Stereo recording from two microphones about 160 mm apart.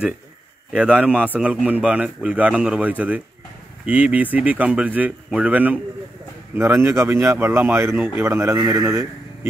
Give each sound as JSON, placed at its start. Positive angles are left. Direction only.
{"t": 0.7, "sound": "a man's voice", "side_deg": -10}
{"t": 8.5, "sound": "speech", "side_deg": -25}
{"t": 8.8, "sound": "speech", "side_deg": -15}